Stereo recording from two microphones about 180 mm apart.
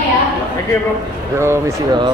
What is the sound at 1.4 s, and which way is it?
Speech, 15° right (ahead or behind).